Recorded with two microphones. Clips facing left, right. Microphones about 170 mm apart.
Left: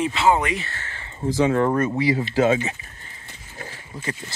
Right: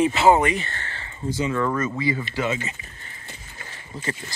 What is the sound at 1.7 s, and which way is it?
Speech, 65° left (ahead or behind).